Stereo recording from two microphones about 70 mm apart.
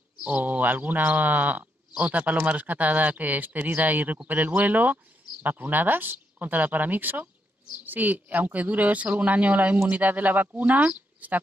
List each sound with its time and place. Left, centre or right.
0.2 s speech: right